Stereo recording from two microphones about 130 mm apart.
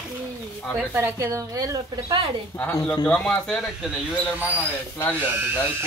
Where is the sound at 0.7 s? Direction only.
15° right (ahead or behind).